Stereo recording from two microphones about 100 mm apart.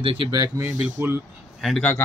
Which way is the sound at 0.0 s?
65° right (ahead or behind).